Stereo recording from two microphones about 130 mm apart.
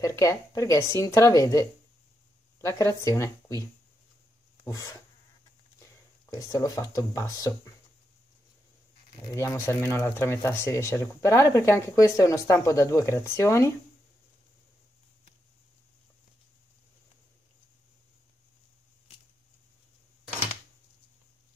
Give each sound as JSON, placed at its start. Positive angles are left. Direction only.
{"t": 0.0, "sound": "speech", "side_deg": 25}
{"t": 4.6, "sound": "speech", "side_deg": 25}
{"t": 6.3, "sound": "speech", "side_deg": 30}
{"t": 9.2, "sound": "speech", "side_deg": 25}